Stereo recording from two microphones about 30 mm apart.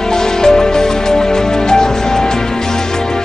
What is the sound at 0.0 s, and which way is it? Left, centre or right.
Music, centre.